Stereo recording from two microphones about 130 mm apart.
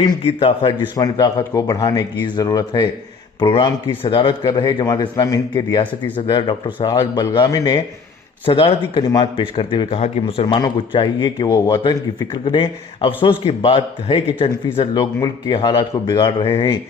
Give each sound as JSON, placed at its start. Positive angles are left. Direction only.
{"t": 0.0, "sound": "a man's voice", "side_deg": 45}
{"t": 0.9, "sound": "speech", "side_deg": 30}
{"t": 4.8, "sound": "speech", "side_deg": 30}
{"t": 8.5, "sound": "a man's voice", "side_deg": 40}
{"t": 9.0, "sound": "speech", "side_deg": 30}
{"t": 9.4, "sound": "a man's voice", "side_deg": 40}
{"t": 10.4, "sound": "a man's voice", "side_deg": 35}
{"t": 15.0, "sound": "speech", "side_deg": 30}